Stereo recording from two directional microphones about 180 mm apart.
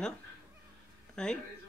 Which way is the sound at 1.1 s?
5° left (ahead or behind).